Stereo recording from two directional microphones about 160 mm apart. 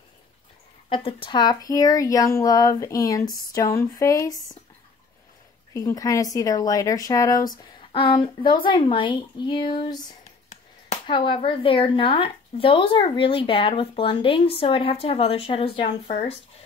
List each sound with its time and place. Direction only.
0.8 s speech: 30° left (ahead or behind)
5.7 s speech: 20° left (ahead or behind)
11.1 s speech: 30° left (ahead or behind)